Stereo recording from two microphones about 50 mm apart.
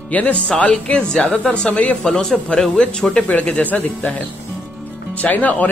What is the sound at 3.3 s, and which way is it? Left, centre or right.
Speech, left.